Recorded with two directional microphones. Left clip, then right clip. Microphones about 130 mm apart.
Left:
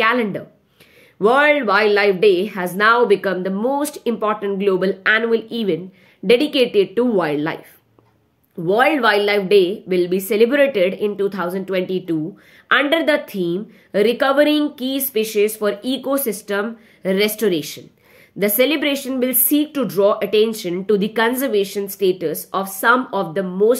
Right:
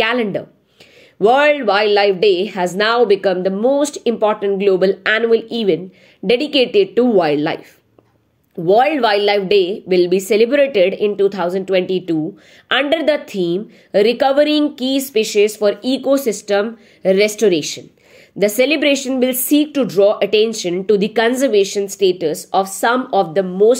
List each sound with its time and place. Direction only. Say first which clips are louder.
0.0 s a woman's voice: right 1 dB; 30° right (ahead or behind)
8.6 s a woman's voice: right 2 dB; 30° right (ahead or behind)